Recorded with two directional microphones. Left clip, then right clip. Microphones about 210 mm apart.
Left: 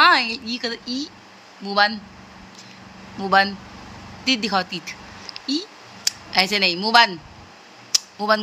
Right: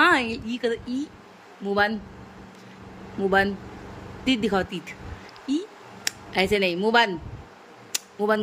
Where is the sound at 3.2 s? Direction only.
10° right (ahead or behind).